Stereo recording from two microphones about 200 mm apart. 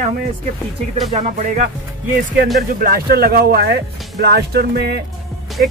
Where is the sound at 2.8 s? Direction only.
50° right (ahead or behind).